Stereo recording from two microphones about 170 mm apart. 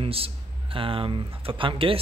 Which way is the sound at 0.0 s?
35° right (ahead or behind).